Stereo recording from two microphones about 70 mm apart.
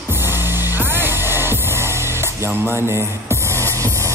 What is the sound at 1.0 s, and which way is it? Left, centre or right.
Music, right.